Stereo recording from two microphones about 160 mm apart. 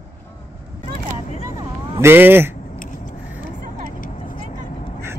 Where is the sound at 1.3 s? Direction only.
50° left (ahead or behind).